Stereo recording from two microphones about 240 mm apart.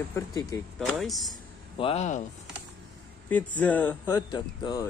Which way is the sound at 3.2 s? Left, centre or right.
Centre.